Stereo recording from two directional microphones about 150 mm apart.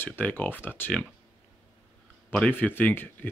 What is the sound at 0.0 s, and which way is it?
Speech, 15° left (ahead or behind).